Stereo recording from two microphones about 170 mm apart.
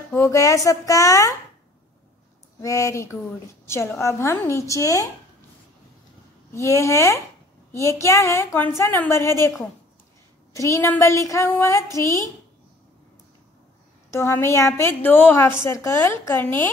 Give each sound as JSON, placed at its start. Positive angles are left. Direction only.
{"t": 0.1, "sound": "speech", "side_deg": 20}
{"t": 2.6, "sound": "a woman's voice", "side_deg": 20}
{"t": 6.5, "sound": "a woman's voice", "side_deg": 15}
{"t": 10.5, "sound": "a woman's voice", "side_deg": 20}
{"t": 14.1, "sound": "a woman's voice", "side_deg": 15}